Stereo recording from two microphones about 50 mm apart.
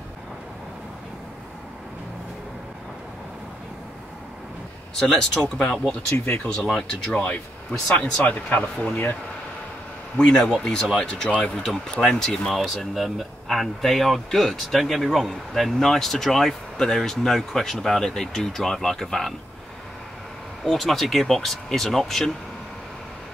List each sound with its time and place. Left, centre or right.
5.0 s speech: centre
6.1 s speech: left
6.5 s speech: centre
6.9 s speech: left
10.1 s speech: centre
12.5 s speech: centre
20.7 s speech: centre